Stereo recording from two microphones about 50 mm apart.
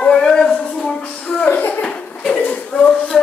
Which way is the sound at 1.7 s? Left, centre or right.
Left.